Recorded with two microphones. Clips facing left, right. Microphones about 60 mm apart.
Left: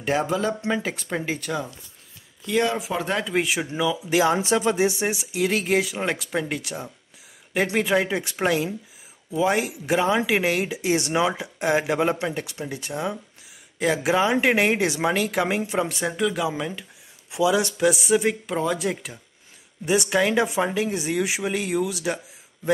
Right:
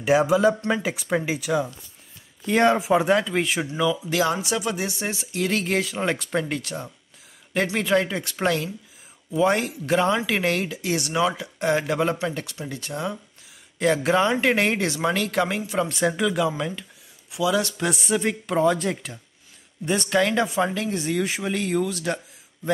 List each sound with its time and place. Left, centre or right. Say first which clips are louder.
0.0 s speech: right 5 dB; centre
2.4 s speech: right 4 dB; right
3.1 s a woman's voice: right 3 dB; centre
4.1 s speech: left 7 dB; centre
4.4 s speech: left 5 dB; left; by 8.6 s centre
9.3 s speech: right 1 dB; centre
13.7 s speech: right 1 dB; centre; by 15.9 s left
15.9 s a woman's voice: right 2 dB; centre
17.3 s speech: left 2 dB; left
17.8 s a woman's voice: left 4 dB; centre